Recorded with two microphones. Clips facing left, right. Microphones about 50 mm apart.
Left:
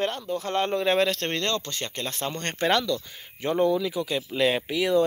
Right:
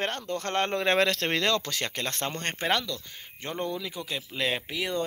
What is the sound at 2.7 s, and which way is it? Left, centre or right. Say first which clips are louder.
Speech: left 5 dB; centre.